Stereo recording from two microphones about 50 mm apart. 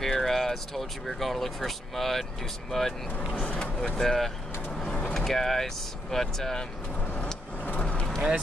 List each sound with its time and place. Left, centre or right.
0.0 s speech: centre
3.3 s speech: left
4.0 s speech: centre
7.8 s vehicle: left